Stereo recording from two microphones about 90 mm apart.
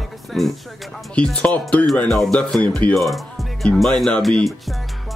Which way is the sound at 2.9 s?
Centre (ahead or behind).